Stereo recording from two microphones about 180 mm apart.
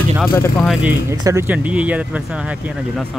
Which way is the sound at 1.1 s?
15° right (ahead or behind).